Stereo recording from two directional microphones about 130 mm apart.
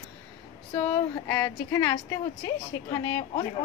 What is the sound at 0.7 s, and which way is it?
Speech, 20° left (ahead or behind).